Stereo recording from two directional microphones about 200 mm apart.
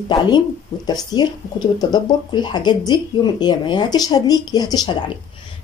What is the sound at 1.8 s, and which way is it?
Speech, 20° left (ahead or behind).